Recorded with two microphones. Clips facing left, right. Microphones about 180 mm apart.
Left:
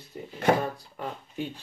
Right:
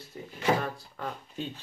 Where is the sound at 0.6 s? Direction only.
15° left (ahead or behind).